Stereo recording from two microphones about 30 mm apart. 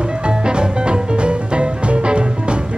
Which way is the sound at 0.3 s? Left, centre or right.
Right.